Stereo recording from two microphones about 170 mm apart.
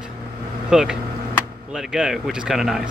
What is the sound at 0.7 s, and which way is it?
Speech, 5° right (ahead or behind).